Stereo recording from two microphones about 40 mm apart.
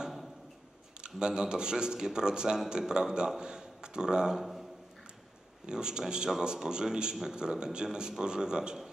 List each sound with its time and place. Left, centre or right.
1.0 s a man's voice: centre
5.7 s a man's voice: right